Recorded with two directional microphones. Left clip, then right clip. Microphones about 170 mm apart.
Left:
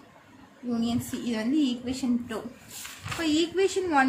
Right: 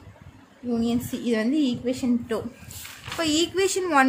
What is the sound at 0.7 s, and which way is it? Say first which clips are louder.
A woman's voice: right 4 dB; 30° right (ahead or behind).